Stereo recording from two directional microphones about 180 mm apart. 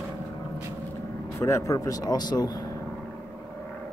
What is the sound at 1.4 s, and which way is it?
Speech, 15° left (ahead or behind).